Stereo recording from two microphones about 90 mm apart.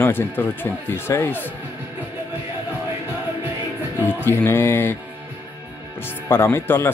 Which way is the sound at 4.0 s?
25° left (ahead or behind).